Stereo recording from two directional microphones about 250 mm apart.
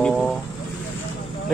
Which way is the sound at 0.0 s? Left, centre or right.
Centre.